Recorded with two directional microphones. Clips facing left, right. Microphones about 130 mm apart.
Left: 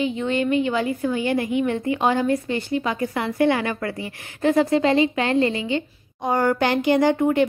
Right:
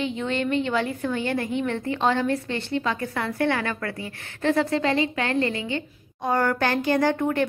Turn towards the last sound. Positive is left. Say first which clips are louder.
# left 4 dB
turn(degrees=15)  # may be behind; listen again after turning